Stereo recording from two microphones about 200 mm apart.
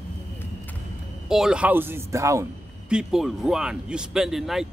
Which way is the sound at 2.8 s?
5° right (ahead or behind).